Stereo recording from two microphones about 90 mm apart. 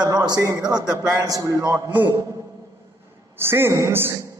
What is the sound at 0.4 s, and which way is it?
A man's voice, 40° right (ahead or behind).